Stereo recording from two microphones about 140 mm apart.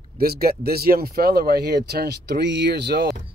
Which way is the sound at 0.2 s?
90° right.